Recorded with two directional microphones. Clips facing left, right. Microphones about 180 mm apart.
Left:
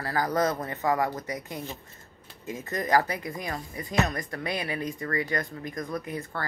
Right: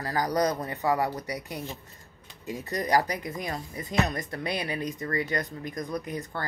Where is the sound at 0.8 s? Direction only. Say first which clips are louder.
Even; 35° right (ahead or behind).